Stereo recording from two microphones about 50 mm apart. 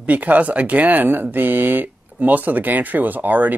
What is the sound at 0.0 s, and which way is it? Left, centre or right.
Speech, right.